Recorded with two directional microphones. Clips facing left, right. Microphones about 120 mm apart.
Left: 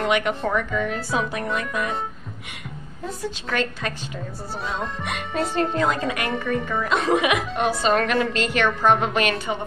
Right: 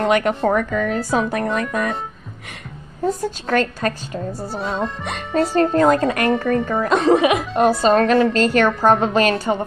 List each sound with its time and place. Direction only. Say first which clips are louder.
0.0 s speech: right 5 dB; 40° right (ahead or behind)
3.2 s a woman's voice: right 1 dB; 45° right (ahead or behind)